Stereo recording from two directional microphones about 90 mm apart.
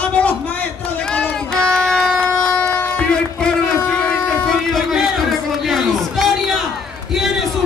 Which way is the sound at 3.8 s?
20° left (ahead or behind).